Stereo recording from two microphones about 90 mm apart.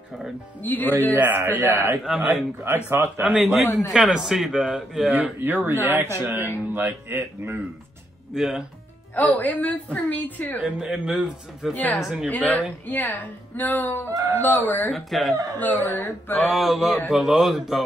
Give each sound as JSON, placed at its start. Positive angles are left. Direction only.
{"t": 0.6, "sound": "speech", "side_deg": 20}
{"t": 1.1, "sound": "speech", "side_deg": -20}
{"t": 2.0, "sound": "a man's voice", "side_deg": 0}
{"t": 5.1, "sound": "speech", "side_deg": -20}
{"t": 8.4, "sound": "a man's voice", "side_deg": -5}
{"t": 9.1, "sound": "a woman's voice", "side_deg": 15}
{"t": 10.6, "sound": "a man's voice", "side_deg": -5}
{"t": 11.7, "sound": "speech", "side_deg": 20}
{"t": 12.0, "sound": "a man's voice", "side_deg": -5}
{"t": 12.3, "sound": "speech", "side_deg": 20}
{"t": 14.9, "sound": "a man's voice", "side_deg": 5}
{"t": 15.3, "sound": "speech", "side_deg": -40}
{"t": 15.6, "sound": "speech", "side_deg": 20}
{"t": 16.3, "sound": "a man's voice", "side_deg": 0}